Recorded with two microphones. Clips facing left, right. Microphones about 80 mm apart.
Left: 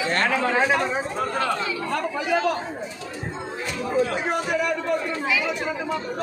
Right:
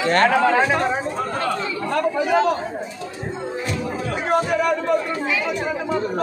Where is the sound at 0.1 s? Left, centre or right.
Right.